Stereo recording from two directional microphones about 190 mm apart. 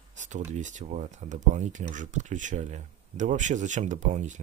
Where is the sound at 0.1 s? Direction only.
40° right (ahead or behind).